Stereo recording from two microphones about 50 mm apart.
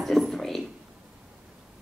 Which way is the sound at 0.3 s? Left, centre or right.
Centre.